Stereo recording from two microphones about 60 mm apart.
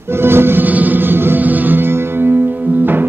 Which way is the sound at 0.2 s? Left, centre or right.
Right.